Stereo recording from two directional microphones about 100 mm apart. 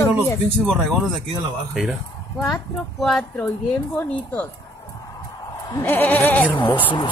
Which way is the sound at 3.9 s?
15° left (ahead or behind).